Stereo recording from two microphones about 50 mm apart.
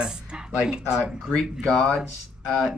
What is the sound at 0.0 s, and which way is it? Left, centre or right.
Speech, centre.